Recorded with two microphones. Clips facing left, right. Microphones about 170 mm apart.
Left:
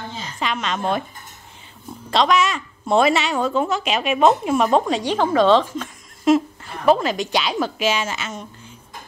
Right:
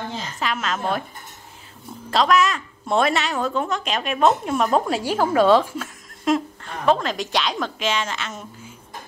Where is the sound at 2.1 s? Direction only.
Centre (ahead or behind).